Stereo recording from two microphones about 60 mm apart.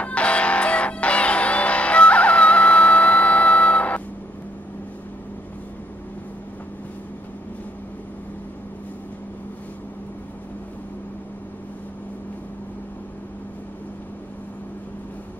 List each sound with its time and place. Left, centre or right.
0.0 s music: left